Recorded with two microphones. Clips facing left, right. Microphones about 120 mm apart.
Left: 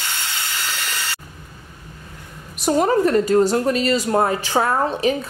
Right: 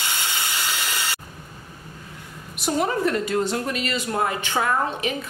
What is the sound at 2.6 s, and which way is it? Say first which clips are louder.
A woman's voice: left 6 dB; 40° left (ahead or behind).